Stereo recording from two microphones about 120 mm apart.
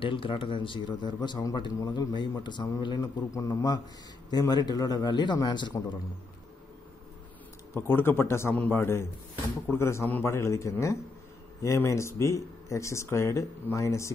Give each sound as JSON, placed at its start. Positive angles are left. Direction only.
{"t": 0.0, "sound": "a man's voice", "side_deg": 45}
{"t": 7.7, "sound": "speech", "side_deg": 20}